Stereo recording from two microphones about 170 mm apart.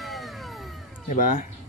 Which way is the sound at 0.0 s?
Centre (ahead or behind).